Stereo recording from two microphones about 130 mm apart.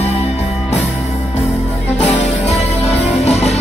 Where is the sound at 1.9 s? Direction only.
65° left (ahead or behind).